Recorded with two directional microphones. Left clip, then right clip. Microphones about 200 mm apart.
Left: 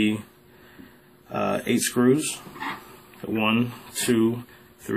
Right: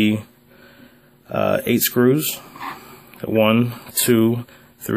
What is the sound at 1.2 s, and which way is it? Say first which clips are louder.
Speech: right 6 dB; 50° right (ahead or behind).